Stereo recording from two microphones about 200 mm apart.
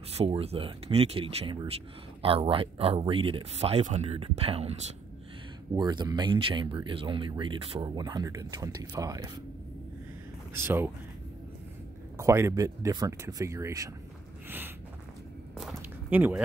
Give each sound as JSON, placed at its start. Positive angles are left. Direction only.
{"t": 0.1, "sound": "speech", "side_deg": -30}
{"t": 5.8, "sound": "speech", "side_deg": -20}
{"t": 10.5, "sound": "speech", "side_deg": -10}
{"t": 12.2, "sound": "speech", "side_deg": -15}
{"t": 15.5, "sound": "a sound", "side_deg": -5}